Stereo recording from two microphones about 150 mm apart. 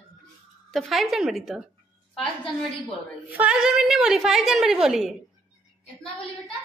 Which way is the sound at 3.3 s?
10° right (ahead or behind).